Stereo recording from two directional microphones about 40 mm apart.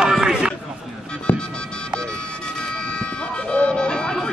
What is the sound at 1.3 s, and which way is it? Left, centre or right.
Music, left.